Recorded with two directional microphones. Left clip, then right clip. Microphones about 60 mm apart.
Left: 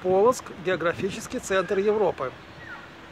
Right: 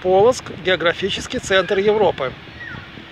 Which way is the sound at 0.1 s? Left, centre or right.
Centre.